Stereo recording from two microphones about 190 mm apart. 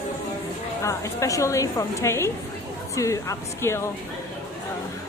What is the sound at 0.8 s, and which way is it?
Speech, 15° left (ahead or behind).